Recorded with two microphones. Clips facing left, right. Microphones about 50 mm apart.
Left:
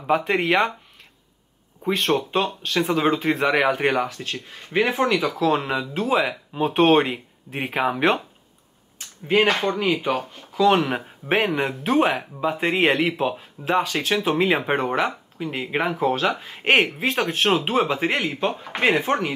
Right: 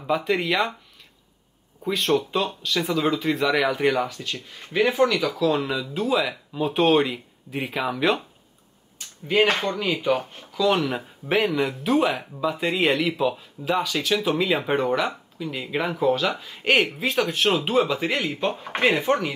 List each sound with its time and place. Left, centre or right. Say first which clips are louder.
0.0 s speech: left 2 dB; left
1.8 s speech: left 1 dB; left
8.9 s a sound: left 2 dB; left
9.7 s speech: left 1 dB; left